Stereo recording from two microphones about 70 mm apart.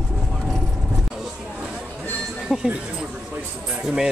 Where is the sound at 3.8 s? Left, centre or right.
Centre.